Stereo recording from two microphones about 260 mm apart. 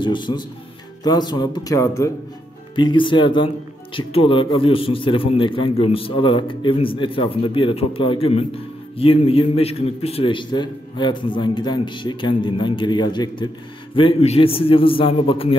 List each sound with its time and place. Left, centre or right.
0.0 s a man's voice: centre